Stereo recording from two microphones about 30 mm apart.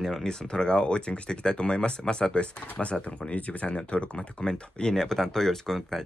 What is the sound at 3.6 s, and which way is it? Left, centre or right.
Speech, left.